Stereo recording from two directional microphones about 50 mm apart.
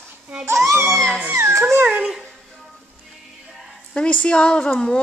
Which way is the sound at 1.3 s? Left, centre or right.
Right.